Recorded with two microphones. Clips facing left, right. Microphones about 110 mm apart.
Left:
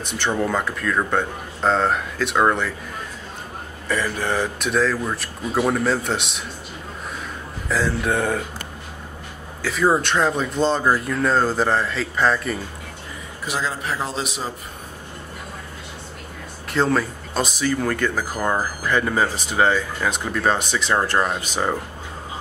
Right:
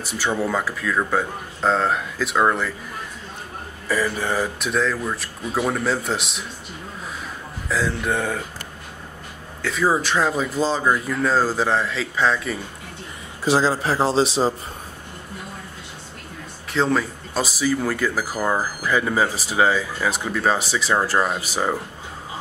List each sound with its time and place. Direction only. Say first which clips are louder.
0.1 s speech: left 1 dB; 5° right (ahead or behind)
3.9 s speech: even; 5° right (ahead or behind)
7.6 s speech: left 1 dB; centre (ahead or behind)
9.6 s speech: left 1 dB; centre (ahead or behind)
13.5 s a man's voice: right 7 dB; 30° right (ahead or behind)
16.7 s speech: left 1 dB; centre (ahead or behind)